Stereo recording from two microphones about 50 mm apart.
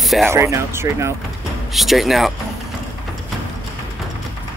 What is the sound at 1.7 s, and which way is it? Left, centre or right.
Speech, centre.